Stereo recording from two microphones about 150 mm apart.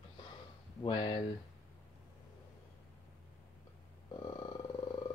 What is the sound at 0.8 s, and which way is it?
Speech, 35° left (ahead or behind).